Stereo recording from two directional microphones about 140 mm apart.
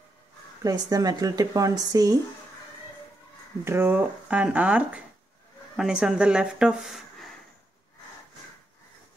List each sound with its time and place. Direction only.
0.7 s speech: 25° right (ahead or behind)
3.6 s speech: 15° right (ahead or behind); by 7.3 s centre (ahead or behind)